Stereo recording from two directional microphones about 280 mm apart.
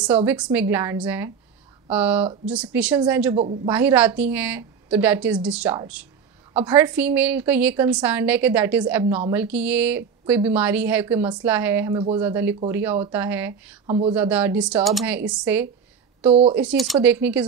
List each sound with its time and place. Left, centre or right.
0.0 s a woman's voice: centre
13.8 s speech: right
14.1 s speech: centre